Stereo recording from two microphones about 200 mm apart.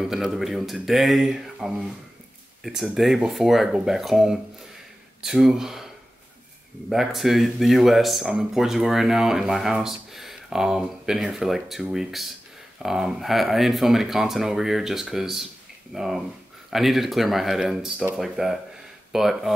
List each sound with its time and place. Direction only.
0.0 s speech: centre (ahead or behind)
6.9 s speech: centre (ahead or behind)